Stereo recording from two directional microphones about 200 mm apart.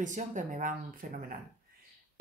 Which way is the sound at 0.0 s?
40° right (ahead or behind).